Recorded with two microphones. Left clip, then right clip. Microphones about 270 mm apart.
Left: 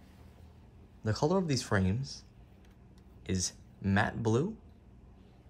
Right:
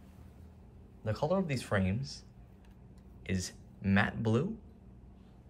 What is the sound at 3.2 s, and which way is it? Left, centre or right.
Speech, centre.